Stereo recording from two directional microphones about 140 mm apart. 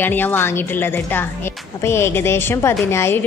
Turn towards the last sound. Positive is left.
turn(degrees=20)  # may be behind; listen again after turning